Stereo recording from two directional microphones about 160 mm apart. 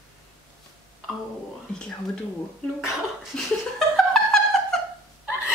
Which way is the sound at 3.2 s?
5° left (ahead or behind).